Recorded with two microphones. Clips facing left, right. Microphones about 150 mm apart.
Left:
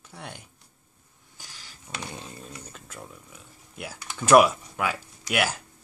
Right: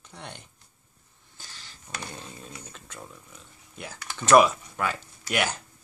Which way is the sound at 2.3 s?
Centre (ahead or behind).